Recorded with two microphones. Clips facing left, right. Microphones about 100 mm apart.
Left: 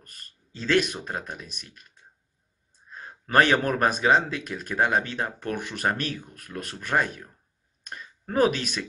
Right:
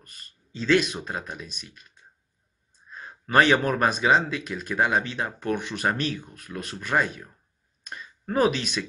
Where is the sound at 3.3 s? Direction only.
50° left (ahead or behind).